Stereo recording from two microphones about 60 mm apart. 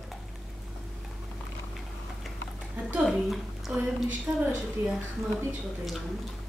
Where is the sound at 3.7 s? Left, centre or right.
Right.